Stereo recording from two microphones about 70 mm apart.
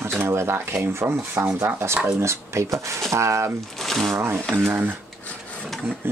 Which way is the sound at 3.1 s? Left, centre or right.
Right.